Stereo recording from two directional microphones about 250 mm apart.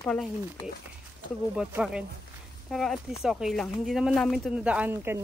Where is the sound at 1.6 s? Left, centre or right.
Centre.